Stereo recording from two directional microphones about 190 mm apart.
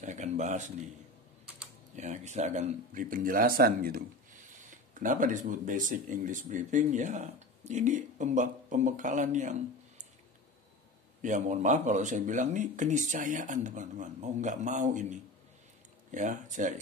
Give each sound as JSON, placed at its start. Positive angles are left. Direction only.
{"t": 0.0, "sound": "speech", "side_deg": -40}
{"t": 2.0, "sound": "speech", "side_deg": -40}
{"t": 11.2, "sound": "speech", "side_deg": -40}